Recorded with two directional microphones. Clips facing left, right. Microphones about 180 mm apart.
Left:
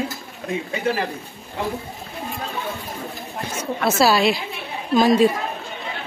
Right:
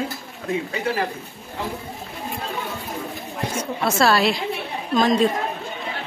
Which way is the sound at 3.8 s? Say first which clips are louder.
Left 1 dB; 5° left (ahead or behind).